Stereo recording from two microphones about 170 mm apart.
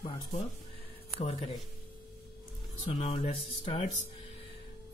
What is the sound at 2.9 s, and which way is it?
Speech, 35° left (ahead or behind).